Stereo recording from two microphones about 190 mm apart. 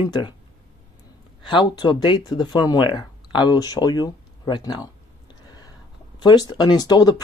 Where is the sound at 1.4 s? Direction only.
25° left (ahead or behind).